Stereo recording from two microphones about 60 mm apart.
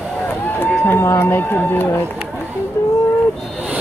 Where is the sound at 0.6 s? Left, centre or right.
Left.